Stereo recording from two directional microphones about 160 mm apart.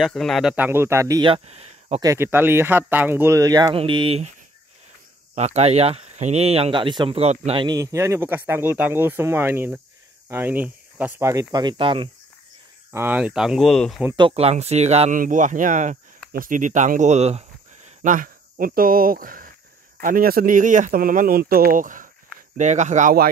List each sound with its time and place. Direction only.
0.0 s speech: centre (ahead or behind); by 1.3 s 20° right (ahead or behind)
1.3 s speech: 40° right (ahead or behind)
2.0 s speech: 20° right (ahead or behind)
3.7 s speech: 35° right (ahead or behind)
7.6 s speech: 20° right (ahead or behind)
12.9 s speech: 10° right (ahead or behind)
14.1 s speech: 35° right (ahead or behind)
15.1 s speech: 55° right (ahead or behind)